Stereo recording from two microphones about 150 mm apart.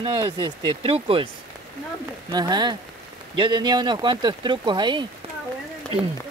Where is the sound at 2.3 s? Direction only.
25° right (ahead or behind).